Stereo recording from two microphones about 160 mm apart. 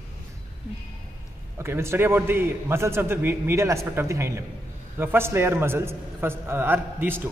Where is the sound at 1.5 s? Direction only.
15° right (ahead or behind).